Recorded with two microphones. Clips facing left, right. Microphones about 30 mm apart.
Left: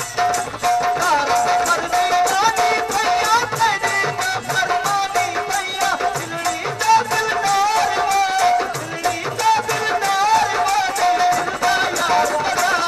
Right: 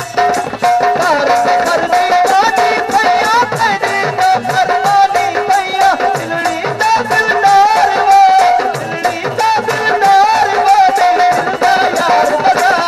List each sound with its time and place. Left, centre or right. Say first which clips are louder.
0.2 s music: right 7 dB; right